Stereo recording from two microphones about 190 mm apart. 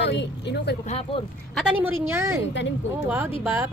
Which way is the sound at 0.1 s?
65° left (ahead or behind).